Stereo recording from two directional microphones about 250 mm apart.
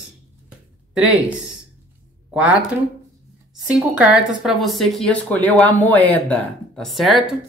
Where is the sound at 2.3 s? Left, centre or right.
Centre.